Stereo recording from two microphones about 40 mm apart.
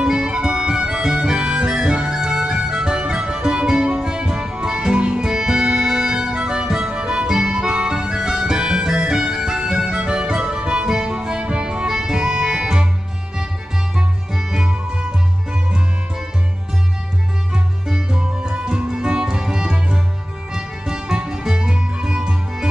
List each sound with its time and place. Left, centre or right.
0.0 s music: centre
14.3 s music: centre
17.5 s music: centre